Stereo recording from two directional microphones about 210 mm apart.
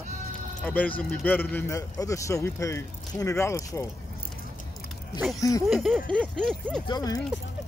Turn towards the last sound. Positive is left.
turn(degrees=20)  # may be behind; listen again after turning